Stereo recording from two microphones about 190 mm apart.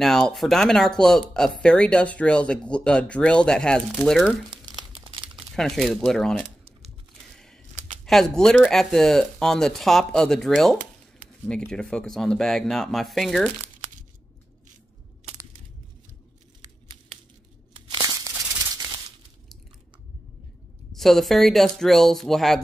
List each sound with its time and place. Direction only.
0.0 s speech: centre (ahead or behind)
4.7 s crumpling: 25° right (ahead or behind)
5.6 s speech: centre (ahead or behind)
7.3 s a sound: 5° left (ahead or behind)
8.0 s speech: 5° left (ahead or behind)
17.7 s crumpling: 20° right (ahead or behind)
20.9 s speech: centre (ahead or behind)